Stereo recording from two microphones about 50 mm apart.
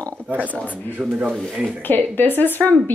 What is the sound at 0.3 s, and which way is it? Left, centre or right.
Speech, right.